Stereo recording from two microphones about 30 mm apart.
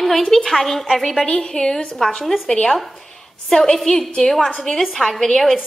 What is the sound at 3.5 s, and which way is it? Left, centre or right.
A woman's voice, centre.